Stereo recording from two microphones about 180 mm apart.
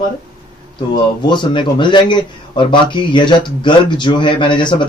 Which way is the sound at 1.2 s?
25° left (ahead or behind).